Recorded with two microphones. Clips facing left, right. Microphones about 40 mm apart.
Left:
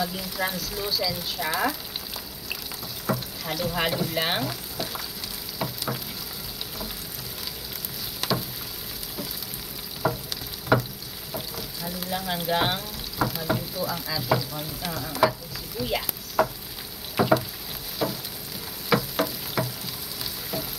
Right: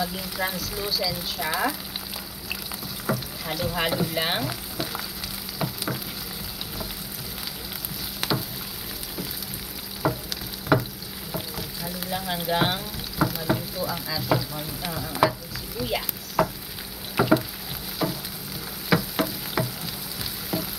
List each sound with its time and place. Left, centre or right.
0.0 s speech: centre
3.1 s frying: centre
5.6 s frying: centre
8.2 s a sound: centre
10.0 s frying: centre
15.2 s stir: centre
15.8 s a sound: centre
20.5 s music: centre